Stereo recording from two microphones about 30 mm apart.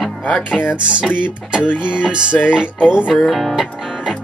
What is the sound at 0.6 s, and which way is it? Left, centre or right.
Music, left.